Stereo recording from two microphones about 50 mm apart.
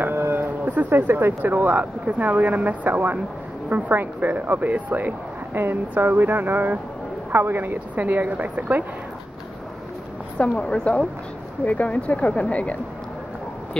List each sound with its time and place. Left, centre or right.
0.1 s speech: right
10.6 s a woman's voice: centre
11.6 s speech: left